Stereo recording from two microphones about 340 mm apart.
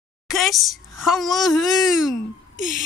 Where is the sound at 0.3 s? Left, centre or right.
Centre.